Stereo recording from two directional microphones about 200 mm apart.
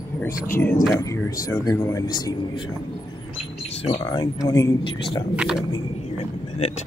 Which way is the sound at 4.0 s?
20° left (ahead or behind).